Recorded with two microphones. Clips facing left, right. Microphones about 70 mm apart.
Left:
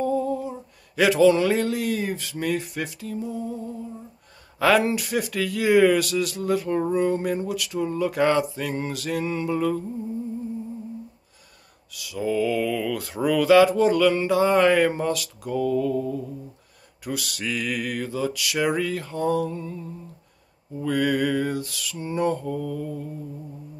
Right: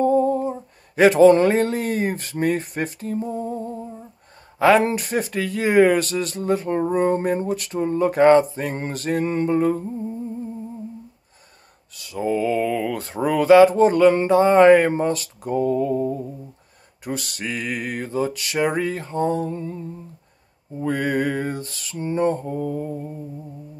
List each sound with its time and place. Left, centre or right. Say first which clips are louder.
0.0 s a sound: right 6 dB; right
4.6 s speech: right 4 dB; right
11.9 s speech: right 2 dB; right